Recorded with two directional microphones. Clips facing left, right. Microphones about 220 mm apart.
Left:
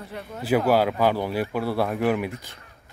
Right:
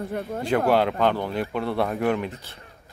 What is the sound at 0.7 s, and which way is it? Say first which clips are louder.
Speech: even; 5° left (ahead or behind).